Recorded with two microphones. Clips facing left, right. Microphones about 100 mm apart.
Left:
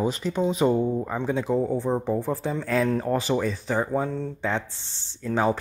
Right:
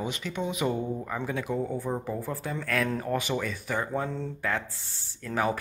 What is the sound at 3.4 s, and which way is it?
Speech, 30° left (ahead or behind).